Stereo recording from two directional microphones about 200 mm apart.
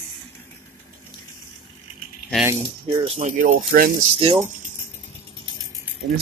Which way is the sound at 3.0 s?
30° right (ahead or behind).